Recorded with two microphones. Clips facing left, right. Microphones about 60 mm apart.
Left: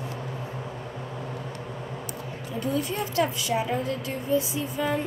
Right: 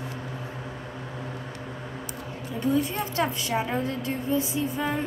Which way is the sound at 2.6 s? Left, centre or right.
Right.